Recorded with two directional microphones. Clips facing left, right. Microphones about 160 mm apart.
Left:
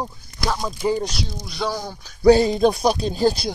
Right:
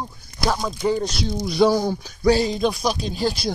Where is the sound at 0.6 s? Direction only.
10° left (ahead or behind).